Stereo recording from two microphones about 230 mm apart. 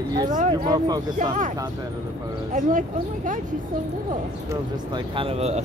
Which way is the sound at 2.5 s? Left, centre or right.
Right.